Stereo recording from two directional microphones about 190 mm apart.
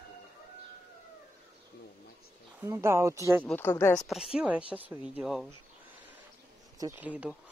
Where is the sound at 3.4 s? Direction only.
10° left (ahead or behind).